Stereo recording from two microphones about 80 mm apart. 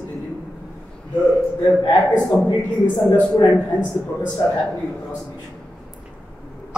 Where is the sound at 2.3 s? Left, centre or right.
Left.